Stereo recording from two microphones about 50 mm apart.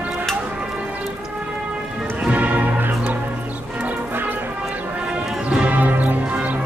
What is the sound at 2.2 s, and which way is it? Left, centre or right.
Music, right.